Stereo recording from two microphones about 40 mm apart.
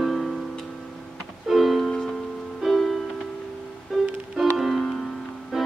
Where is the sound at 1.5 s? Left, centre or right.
Centre.